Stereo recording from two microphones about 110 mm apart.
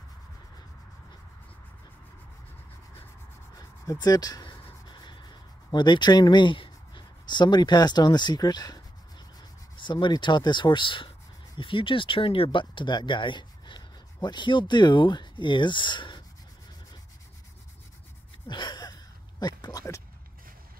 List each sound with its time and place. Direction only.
3.5 s writing: 30° left (ahead or behind)
9.4 s speech: 45° left (ahead or behind)
18.5 s a sound: 45° left (ahead or behind)